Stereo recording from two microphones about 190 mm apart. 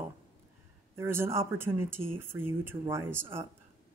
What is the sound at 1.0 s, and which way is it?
Speech, 15° right (ahead or behind).